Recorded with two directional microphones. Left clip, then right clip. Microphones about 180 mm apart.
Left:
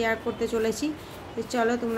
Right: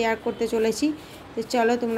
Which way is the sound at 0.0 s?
20° right (ahead or behind).